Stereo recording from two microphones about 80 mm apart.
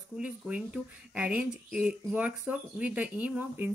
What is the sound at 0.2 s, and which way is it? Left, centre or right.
Speech, centre.